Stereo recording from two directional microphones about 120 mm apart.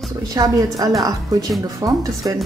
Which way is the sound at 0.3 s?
30° right (ahead or behind).